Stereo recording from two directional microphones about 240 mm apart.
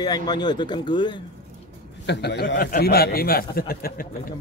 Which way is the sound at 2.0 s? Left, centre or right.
Left.